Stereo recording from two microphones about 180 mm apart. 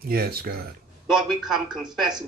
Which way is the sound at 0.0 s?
60° right (ahead or behind).